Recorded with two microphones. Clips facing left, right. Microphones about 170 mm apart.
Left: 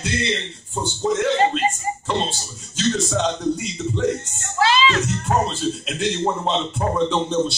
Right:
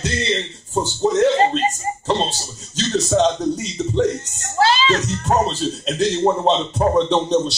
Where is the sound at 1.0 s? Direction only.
40° right (ahead or behind).